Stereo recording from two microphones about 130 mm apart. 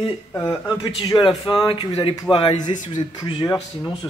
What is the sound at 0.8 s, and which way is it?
Speech, 35° left (ahead or behind).